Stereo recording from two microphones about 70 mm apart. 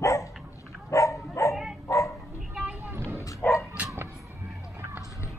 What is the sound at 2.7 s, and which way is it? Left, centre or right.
Vehicle, right.